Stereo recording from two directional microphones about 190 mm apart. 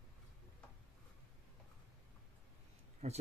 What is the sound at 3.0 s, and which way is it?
Speech, 35° right (ahead or behind).